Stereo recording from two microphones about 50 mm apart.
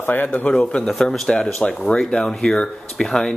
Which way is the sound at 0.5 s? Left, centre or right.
Centre.